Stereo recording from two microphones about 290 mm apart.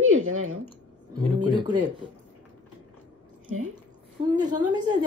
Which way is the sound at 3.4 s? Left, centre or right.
Right.